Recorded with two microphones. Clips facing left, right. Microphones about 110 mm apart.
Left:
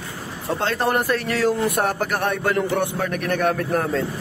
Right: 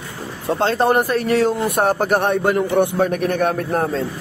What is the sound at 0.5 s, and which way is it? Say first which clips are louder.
A man's voice: right 5 dB; 25° right (ahead or behind).